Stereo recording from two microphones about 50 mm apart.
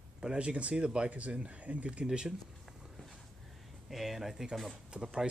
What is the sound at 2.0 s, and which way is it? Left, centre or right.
Speech, centre.